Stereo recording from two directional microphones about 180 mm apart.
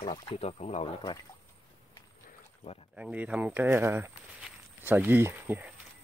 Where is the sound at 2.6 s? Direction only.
35° left (ahead or behind).